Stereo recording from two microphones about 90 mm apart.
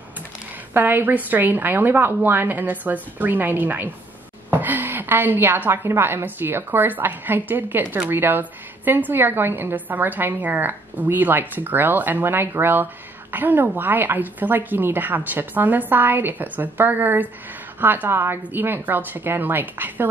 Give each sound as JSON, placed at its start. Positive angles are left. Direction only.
{"t": 0.7, "sound": "a woman's voice", "side_deg": -20}